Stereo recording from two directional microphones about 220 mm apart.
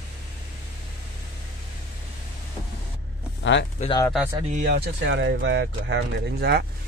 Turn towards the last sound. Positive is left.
turn(degrees=-50)  # may be behind; listen again after turning